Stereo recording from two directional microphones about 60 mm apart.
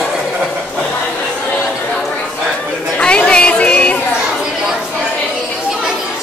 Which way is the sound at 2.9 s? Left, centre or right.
Centre.